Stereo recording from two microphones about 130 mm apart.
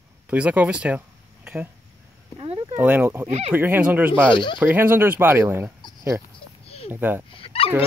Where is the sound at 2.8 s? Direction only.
15° right (ahead or behind).